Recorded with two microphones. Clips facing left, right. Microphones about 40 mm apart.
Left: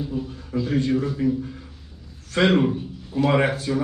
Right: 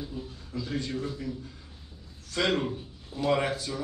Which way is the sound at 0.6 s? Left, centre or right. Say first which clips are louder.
Left 10 dB; left.